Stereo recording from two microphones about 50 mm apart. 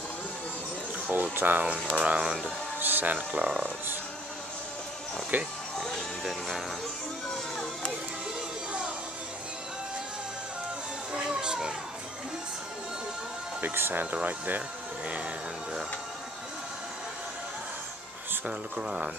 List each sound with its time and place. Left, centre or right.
1.1 s speech: right
1.9 s speech: right
2.8 s speech: right
5.3 s speech: right
7.2 s music: centre
11.1 s children playing: centre
13.7 s speech: right
14.1 s speech: right
18.5 s speech: centre